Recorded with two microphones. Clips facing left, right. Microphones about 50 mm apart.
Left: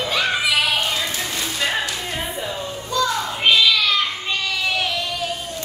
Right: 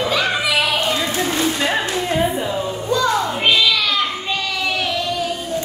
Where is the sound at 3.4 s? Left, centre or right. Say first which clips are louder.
Left 2 dB; centre.